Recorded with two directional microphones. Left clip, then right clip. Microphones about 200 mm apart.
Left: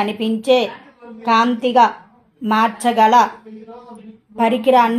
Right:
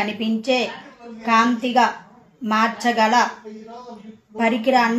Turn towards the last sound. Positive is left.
turn(degrees=45)  # may be behind; listen again after turning